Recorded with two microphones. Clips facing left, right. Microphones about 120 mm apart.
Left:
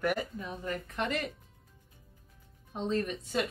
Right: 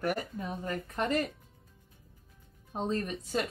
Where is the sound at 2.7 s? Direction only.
40° right (ahead or behind).